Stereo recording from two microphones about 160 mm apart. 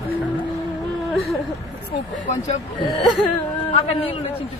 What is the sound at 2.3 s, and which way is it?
Speech, 50° left (ahead or behind).